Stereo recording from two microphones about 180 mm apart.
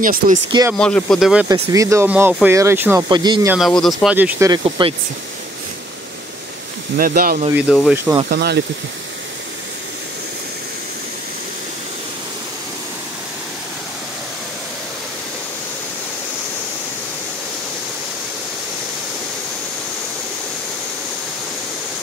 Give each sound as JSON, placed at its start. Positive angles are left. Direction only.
{"t": 0.0, "sound": "speech", "side_deg": -50}
{"t": 0.7, "sound": "speech", "side_deg": 5}
{"t": 1.5, "sound": "speech", "side_deg": -20}
{"t": 3.1, "sound": "speech", "side_deg": -25}
{"t": 3.5, "sound": "speech", "side_deg": 0}
{"t": 4.5, "sound": "speech", "side_deg": -25}
{"t": 7.0, "sound": "speech", "side_deg": -50}
{"t": 7.5, "sound": "speech", "side_deg": 0}
{"t": 7.9, "sound": "speech", "side_deg": -15}
{"t": 8.3, "sound": "speech", "side_deg": -65}